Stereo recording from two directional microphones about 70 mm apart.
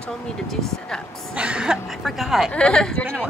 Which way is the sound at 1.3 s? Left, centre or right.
Centre.